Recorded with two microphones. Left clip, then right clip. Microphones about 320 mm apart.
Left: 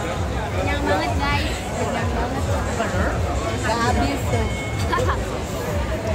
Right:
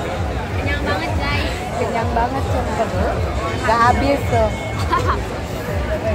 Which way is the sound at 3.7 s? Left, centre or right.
Right.